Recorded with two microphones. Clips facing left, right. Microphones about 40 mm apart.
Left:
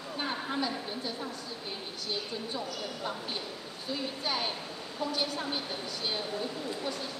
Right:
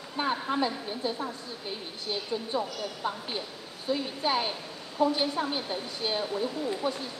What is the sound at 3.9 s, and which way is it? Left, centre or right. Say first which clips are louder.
Speech: right 6 dB; centre.